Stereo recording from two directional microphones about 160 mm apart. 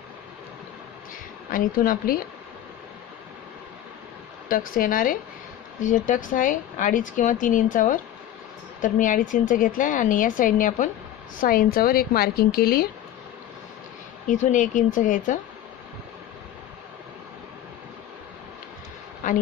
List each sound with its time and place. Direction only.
1.5 s speech: 60° left (ahead or behind)
4.5 s a woman's voice: 60° left (ahead or behind)
14.2 s speech: 50° left (ahead or behind)
19.2 s a sound: 55° left (ahead or behind)